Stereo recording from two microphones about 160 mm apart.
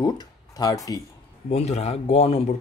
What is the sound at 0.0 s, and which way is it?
Speech, 25° left (ahead or behind).